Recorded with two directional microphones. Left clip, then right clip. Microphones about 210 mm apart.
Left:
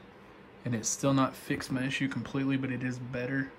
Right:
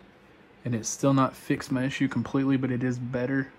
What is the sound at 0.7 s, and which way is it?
Speech, 5° right (ahead or behind).